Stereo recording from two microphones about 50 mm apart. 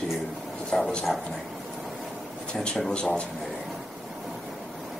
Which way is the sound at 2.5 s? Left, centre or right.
Centre.